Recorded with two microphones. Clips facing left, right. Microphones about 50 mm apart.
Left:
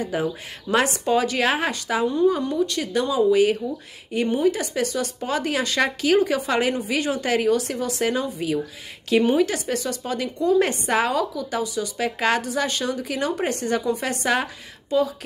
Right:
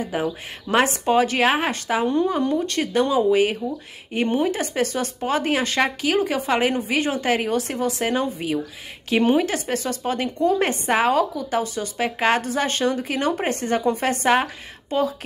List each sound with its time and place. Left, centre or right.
0.0 s speech: centre
0.7 s a woman's voice: right
2.5 s a woman's voice: right
3.3 s a woman's voice: right
5.8 s a woman's voice: centre
12.4 s a woman's voice: right